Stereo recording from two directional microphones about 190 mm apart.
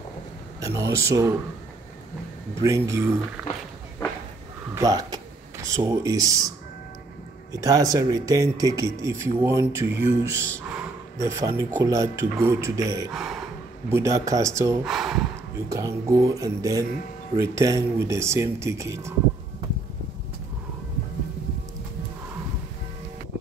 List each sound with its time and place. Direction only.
0.6 s a sound: 15° right (ahead or behind)
0.9 s speech: 15° right (ahead or behind)
2.6 s speech: 15° right (ahead or behind)
4.7 s speech: 20° right (ahead or behind)
7.5 s speech: 20° right (ahead or behind)
13.1 s speech: centre (ahead or behind)
13.8 s speech: 15° right (ahead or behind)
14.9 s speech: centre (ahead or behind)
15.7 s speech: 15° right (ahead or behind)